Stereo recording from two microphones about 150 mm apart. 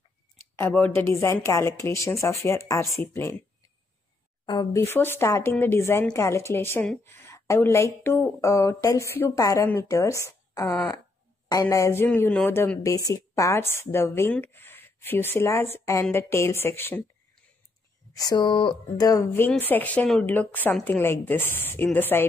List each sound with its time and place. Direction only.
0.7 s speech: 10° left (ahead or behind)
4.5 s a woman's voice: 20° left (ahead or behind)
18.1 s a woman's voice: 25° left (ahead or behind)